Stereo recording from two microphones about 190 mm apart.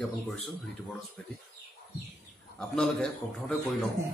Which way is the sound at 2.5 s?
5° left (ahead or behind).